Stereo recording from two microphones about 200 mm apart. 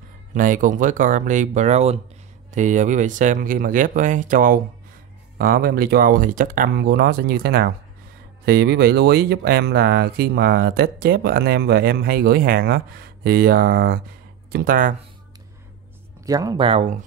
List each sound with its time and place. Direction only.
0.3 s speech: 40° right (ahead or behind)
16.3 s speech: 20° right (ahead or behind)